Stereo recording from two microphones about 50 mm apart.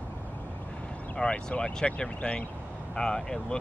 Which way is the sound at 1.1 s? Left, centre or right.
Centre.